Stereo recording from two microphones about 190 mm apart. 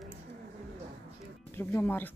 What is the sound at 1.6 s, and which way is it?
Speech, 10° left (ahead or behind).